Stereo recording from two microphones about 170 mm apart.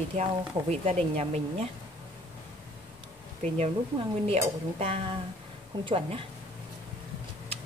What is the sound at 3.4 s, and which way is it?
Speech, 45° right (ahead or behind).